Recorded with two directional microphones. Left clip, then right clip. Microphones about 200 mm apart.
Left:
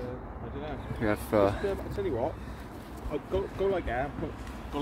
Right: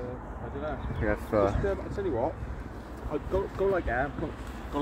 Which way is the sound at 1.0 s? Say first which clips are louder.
Left 1 dB; 20° left (ahead or behind).